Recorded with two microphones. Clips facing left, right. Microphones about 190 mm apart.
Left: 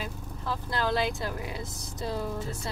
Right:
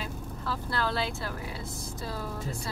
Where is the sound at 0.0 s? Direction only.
15° left (ahead or behind).